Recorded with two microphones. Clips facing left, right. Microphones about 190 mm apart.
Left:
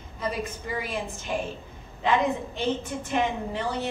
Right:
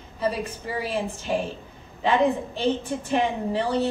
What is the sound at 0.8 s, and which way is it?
A woman's voice, 35° right (ahead or behind).